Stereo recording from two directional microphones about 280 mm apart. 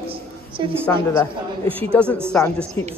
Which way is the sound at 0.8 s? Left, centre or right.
Centre.